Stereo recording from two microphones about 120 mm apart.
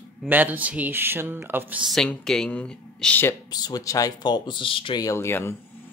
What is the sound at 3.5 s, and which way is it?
Speech, 35° left (ahead or behind).